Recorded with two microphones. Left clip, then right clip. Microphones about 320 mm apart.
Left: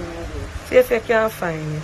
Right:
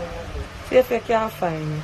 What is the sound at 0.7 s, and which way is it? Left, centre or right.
Speech, centre.